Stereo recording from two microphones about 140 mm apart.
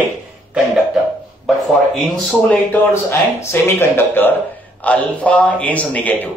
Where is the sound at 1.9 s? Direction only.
5° left (ahead or behind).